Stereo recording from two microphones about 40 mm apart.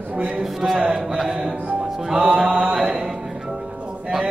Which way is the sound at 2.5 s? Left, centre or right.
Centre.